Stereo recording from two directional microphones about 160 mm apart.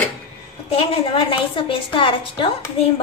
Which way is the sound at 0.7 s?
35° left (ahead or behind).